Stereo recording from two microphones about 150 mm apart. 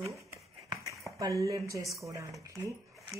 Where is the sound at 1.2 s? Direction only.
20° right (ahead or behind).